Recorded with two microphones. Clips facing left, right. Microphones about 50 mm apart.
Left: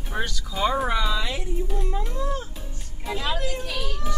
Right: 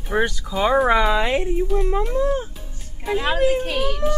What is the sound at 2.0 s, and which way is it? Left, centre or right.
Speech, right.